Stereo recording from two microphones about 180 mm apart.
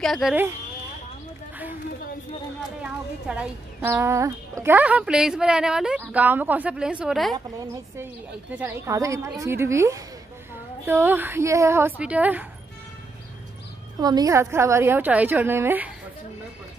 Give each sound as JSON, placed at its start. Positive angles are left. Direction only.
{"t": 0.0, "sound": "a woman's voice", "side_deg": 0}
{"t": 3.3, "sound": "a woman's voice", "side_deg": -5}
{"t": 14.0, "sound": "speech", "side_deg": -20}